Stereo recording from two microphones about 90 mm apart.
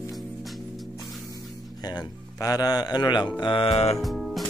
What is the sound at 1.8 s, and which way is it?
A man's voice, 50° left (ahead or behind).